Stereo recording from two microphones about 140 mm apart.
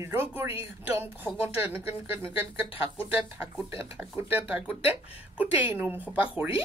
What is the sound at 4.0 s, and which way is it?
Speech, 15° right (ahead or behind).